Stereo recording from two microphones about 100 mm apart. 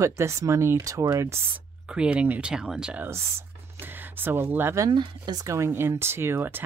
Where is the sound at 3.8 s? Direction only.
20° right (ahead or behind).